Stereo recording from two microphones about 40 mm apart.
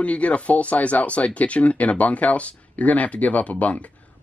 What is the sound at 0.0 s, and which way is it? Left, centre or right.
Speech, left.